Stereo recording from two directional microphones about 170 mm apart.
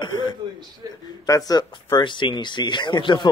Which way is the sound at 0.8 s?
25° right (ahead or behind).